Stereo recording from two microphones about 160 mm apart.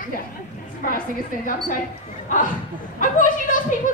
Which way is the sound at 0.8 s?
60° left (ahead or behind).